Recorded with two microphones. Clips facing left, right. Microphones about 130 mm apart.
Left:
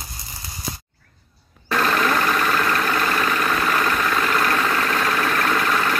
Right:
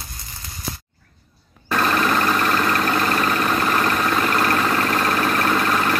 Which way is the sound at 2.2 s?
25° right (ahead or behind).